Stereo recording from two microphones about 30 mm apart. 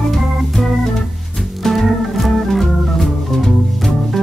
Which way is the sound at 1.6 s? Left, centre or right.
Centre.